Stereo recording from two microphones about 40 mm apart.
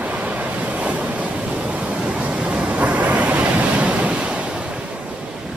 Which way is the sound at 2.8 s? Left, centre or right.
Right.